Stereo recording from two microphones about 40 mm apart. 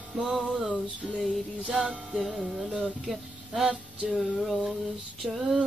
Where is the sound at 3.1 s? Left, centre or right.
Centre.